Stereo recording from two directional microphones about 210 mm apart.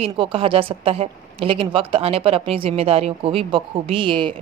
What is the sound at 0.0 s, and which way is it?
A woman's voice, 25° right (ahead or behind).